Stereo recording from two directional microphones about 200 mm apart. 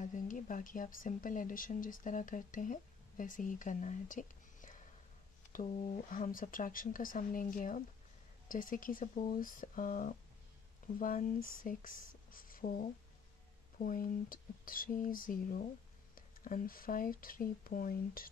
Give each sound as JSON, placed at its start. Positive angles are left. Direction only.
{"t": 0.0, "sound": "speech", "side_deg": 40}